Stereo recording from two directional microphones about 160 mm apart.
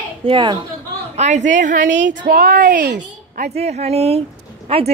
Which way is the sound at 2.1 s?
80° right.